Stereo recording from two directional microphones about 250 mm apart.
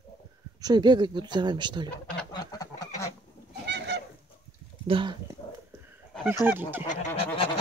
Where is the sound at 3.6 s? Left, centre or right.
Right.